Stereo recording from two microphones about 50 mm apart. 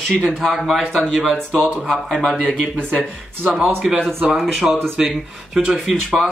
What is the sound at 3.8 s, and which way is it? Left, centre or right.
Speech, centre.